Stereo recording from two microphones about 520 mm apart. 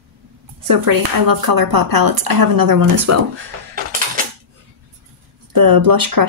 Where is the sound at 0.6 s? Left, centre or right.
Right.